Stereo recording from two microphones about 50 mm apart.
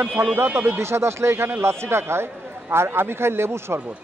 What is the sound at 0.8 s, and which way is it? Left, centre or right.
A man's voice, right.